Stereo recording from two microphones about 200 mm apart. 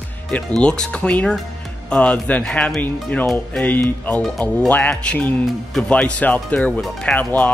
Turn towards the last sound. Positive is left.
turn(degrees=10)  # may be behind; listen again after turning